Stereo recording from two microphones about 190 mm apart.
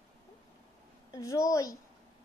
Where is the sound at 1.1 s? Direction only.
15° left (ahead or behind).